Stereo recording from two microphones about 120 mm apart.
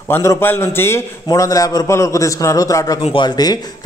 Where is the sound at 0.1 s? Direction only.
20° left (ahead or behind).